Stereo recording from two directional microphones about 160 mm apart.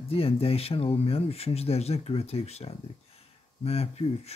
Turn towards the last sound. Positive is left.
turn(degrees=40)  # may be behind; listen again after turning